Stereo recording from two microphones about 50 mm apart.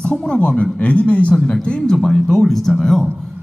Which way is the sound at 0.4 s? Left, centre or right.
Left.